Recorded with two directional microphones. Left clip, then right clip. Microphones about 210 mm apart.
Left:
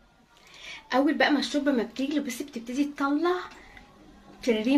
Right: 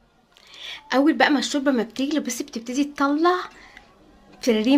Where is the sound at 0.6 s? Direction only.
45° right (ahead or behind).